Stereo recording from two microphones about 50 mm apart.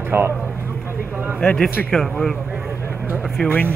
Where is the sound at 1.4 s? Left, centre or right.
Left.